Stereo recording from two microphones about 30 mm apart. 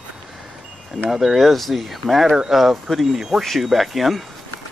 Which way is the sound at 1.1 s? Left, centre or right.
Centre.